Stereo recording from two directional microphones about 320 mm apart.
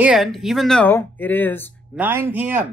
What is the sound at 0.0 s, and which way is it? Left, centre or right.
Speech, centre.